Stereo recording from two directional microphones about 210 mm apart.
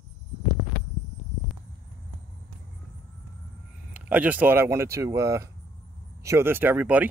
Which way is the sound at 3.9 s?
5° right (ahead or behind).